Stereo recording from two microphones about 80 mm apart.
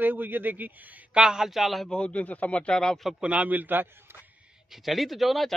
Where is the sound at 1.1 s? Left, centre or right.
Centre.